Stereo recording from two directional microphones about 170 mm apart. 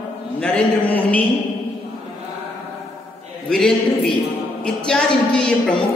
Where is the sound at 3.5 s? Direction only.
5° left (ahead or behind).